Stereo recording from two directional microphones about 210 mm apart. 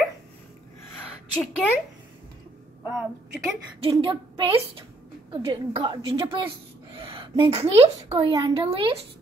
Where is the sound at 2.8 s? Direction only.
10° right (ahead or behind).